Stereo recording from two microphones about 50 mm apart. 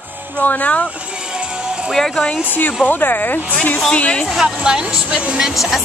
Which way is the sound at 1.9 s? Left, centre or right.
Centre.